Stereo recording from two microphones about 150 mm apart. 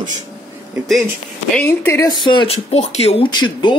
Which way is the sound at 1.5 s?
15° left (ahead or behind).